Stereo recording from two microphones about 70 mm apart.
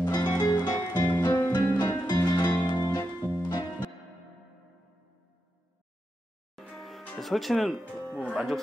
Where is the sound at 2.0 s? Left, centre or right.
Left.